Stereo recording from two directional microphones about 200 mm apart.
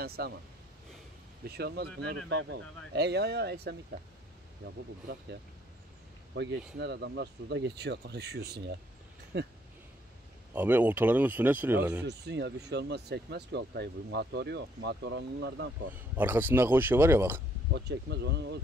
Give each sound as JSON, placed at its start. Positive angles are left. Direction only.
{"t": 0.0, "sound": "speech", "side_deg": -50}
{"t": 1.5, "sound": "speech", "side_deg": -55}
{"t": 6.3, "sound": "speech", "side_deg": -60}
{"t": 10.5, "sound": "speech", "side_deg": -10}
{"t": 12.0, "sound": "speech", "side_deg": -55}
{"t": 15.9, "sound": "speech", "side_deg": -10}
{"t": 17.7, "sound": "speech", "side_deg": -55}